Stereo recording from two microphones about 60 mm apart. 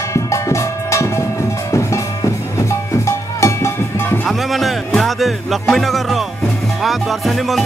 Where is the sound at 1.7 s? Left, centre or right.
Left.